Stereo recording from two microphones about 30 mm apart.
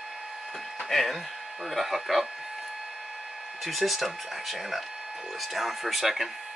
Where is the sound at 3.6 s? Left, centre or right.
Centre.